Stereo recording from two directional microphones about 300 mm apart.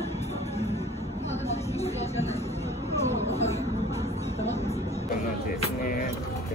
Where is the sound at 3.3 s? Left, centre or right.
Left.